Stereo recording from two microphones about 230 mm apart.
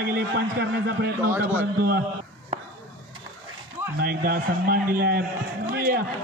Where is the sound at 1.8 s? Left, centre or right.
Right.